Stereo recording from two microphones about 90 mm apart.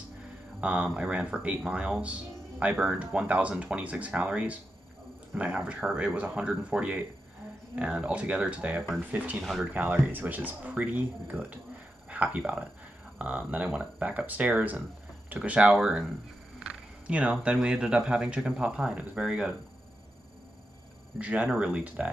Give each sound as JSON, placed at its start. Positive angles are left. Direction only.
{"t": 0.6, "sound": "speech", "side_deg": -15}
{"t": 9.4, "sound": "speech", "side_deg": 0}
{"t": 9.7, "sound": "speech", "side_deg": -20}
{"t": 21.2, "sound": "speech", "side_deg": -15}